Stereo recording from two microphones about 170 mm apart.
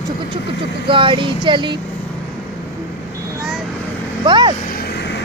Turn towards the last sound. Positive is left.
turn(degrees=-25)  # may be behind; listen again after turning